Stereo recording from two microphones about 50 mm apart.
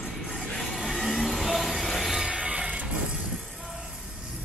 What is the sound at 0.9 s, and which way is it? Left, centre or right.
Vehicle, centre.